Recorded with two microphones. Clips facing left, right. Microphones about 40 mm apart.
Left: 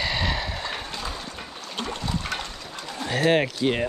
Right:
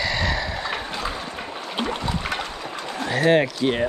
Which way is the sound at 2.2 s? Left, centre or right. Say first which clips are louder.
Right 4 dB; centre.